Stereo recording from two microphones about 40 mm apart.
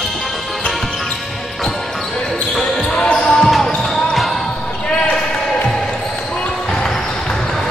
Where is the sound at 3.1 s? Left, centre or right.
Left.